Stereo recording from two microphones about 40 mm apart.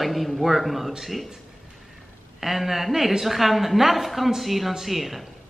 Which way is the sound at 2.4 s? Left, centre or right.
Centre.